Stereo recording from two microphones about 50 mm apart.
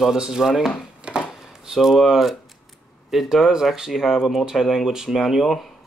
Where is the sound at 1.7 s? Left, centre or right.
Centre.